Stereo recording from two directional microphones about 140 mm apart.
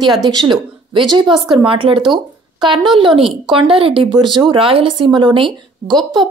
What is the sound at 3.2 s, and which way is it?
Speech, 40° right (ahead or behind).